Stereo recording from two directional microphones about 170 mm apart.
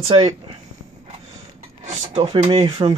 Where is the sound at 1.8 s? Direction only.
35° right (ahead or behind).